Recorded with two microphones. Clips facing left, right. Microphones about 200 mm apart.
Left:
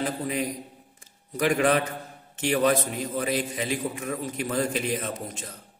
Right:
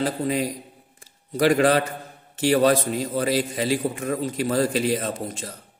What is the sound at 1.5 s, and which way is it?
A man's voice, 35° right (ahead or behind).